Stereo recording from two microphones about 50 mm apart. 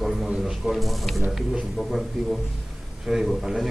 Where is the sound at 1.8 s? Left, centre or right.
Centre.